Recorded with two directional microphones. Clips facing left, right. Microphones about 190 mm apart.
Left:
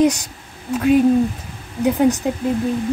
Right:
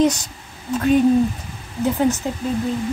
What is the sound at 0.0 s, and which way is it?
A woman's voice, 10° left (ahead or behind).